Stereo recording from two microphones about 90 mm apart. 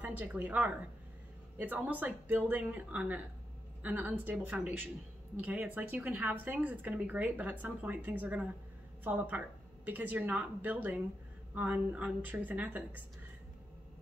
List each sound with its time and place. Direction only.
0.0 s speech: 20° right (ahead or behind)
1.9 s a woman's voice: 20° right (ahead or behind)